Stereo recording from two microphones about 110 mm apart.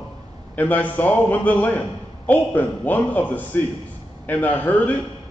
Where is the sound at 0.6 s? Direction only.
15° left (ahead or behind).